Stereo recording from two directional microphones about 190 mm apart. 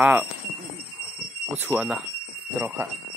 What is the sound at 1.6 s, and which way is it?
Speech, 5° right (ahead or behind).